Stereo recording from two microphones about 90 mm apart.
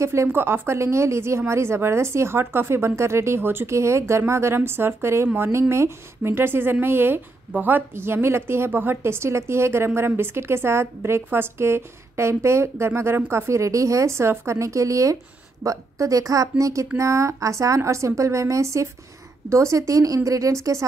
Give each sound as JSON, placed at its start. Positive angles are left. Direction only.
{"t": 0.0, "sound": "a woman's voice", "side_deg": -30}